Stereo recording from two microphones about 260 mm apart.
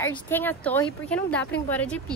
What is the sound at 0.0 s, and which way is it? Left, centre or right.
Speech, centre.